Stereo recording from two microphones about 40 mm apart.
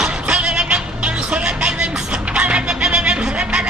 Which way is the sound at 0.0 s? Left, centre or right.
Right.